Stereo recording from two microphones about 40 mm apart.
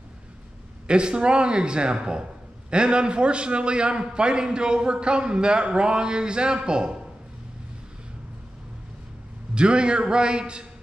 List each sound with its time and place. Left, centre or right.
0.8 s a man's voice: right
9.6 s a man's voice: right